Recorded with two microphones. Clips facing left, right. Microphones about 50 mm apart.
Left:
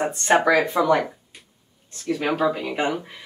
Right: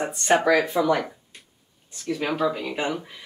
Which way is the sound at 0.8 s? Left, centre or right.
Centre.